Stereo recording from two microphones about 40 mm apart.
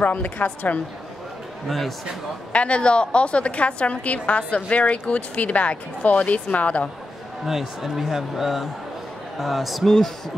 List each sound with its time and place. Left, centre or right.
0.0 s a woman's voice: left
1.7 s speech: centre
2.5 s speech: left
4.6 s speech: left
7.4 s speech: centre
9.8 s speech: centre